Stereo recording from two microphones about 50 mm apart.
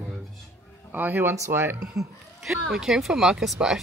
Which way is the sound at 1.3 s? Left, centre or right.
Right.